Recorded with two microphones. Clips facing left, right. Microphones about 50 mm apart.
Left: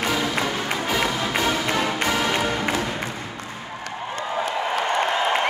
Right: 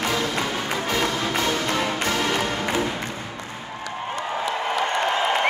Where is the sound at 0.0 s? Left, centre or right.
Centre.